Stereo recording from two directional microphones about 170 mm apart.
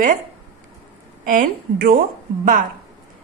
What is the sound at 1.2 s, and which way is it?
A woman's voice, 55° right (ahead or behind).